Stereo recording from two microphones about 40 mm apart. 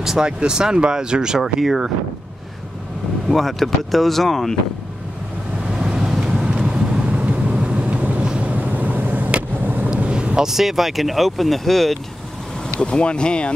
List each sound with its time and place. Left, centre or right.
0.2 s speech: centre
1.4 s speech: centre
3.3 s speech: centre
5.7 s vehicle: centre
6.4 s vehicle: right
8.2 s vehicle: right
8.5 s vehicle: right
9.9 s vehicle: right
10.4 s speech: centre
12.8 s speech: left